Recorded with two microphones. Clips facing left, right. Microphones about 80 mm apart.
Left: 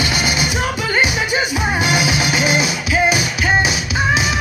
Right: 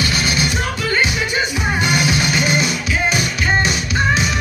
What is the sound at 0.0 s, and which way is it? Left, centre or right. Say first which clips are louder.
Music: even; centre.